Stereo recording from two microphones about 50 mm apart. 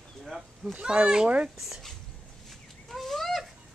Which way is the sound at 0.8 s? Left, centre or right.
Centre.